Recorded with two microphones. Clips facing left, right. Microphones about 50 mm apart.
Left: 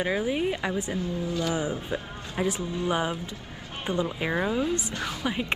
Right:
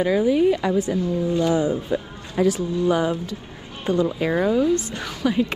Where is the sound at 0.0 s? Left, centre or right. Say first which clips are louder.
Right 8 dB; centre.